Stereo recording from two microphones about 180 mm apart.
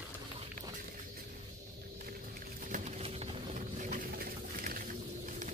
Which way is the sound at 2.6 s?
40° right (ahead or behind).